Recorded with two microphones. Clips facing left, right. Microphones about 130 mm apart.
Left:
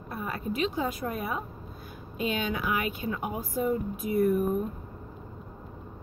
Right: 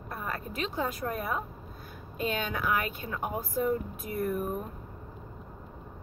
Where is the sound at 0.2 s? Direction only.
15° left (ahead or behind).